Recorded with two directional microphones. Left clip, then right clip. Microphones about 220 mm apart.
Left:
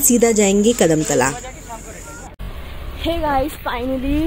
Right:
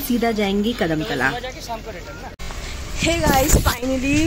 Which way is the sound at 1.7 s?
60° right (ahead or behind).